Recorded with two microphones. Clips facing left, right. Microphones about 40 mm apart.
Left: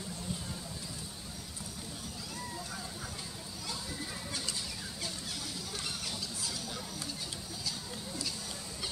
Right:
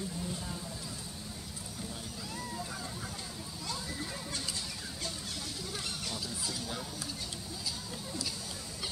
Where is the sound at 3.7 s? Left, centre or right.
Centre.